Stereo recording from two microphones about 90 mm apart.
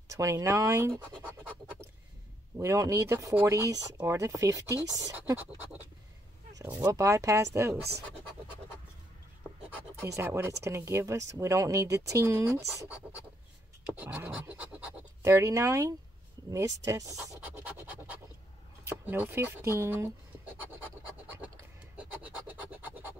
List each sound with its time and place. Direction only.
0.1 s speech: 35° right (ahead or behind)
2.5 s speech: 35° right (ahead or behind)
5.1 s speech: 20° right (ahead or behind)
6.8 s speech: 35° right (ahead or behind)
10.0 s speech: 30° right (ahead or behind)
13.8 s a sound: 20° right (ahead or behind)
14.5 s scratch: 15° right (ahead or behind)
15.2 s speech: 35° right (ahead or behind)
18.9 s speech: 25° right (ahead or behind)
21.9 s a sound: 15° right (ahead or behind)